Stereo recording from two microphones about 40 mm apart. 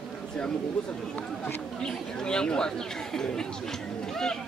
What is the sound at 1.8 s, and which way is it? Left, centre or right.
Speech, centre.